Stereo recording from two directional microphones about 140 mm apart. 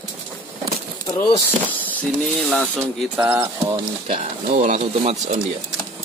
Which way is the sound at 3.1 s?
15° right (ahead or behind).